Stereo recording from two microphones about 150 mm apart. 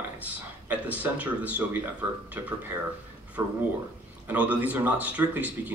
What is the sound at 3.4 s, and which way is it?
Speech, 20° right (ahead or behind).